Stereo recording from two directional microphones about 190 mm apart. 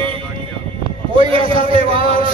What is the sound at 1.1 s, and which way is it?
A man's voice, 30° right (ahead or behind).